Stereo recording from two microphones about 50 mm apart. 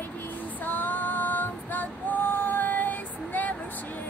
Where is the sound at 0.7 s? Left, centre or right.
Left.